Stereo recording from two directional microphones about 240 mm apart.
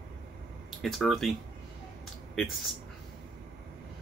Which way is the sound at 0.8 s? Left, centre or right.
Centre.